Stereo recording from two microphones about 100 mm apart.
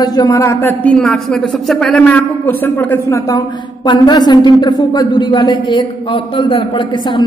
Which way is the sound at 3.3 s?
45° left (ahead or behind).